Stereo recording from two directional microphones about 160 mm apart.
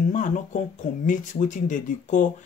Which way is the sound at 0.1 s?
50° left (ahead or behind).